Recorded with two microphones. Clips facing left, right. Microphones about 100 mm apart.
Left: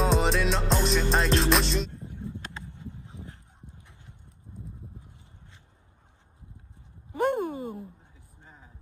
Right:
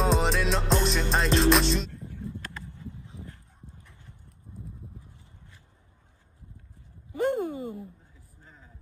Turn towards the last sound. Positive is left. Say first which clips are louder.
# even
turn(degrees=55)  # may be behind; listen again after turning